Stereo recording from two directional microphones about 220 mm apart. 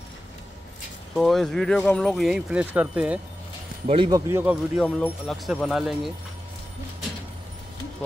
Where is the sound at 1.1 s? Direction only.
Centre (ahead or behind).